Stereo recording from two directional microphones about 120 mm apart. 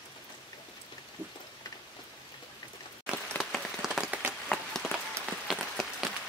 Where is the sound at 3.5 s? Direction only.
Centre (ahead or behind).